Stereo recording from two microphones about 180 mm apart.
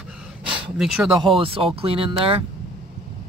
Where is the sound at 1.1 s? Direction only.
25° right (ahead or behind).